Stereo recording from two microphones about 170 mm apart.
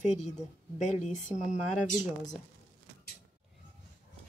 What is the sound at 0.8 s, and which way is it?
Speech, 45° left (ahead or behind).